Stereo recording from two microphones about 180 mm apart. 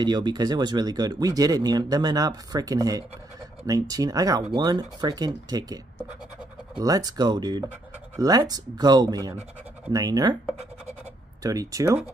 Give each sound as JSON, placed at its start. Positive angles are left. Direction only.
{"t": 0.0, "sound": "speech", "side_deg": -25}
{"t": 6.8, "sound": "speech", "side_deg": -20}
{"t": 11.4, "sound": "speech", "side_deg": -20}